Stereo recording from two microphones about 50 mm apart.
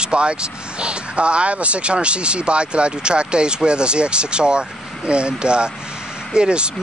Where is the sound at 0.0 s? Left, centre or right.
Right.